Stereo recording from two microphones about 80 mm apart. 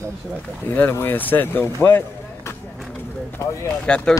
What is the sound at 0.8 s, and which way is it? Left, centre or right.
A man's voice, left.